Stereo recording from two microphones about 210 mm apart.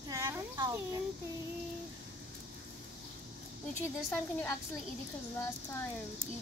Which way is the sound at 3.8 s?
10° left (ahead or behind).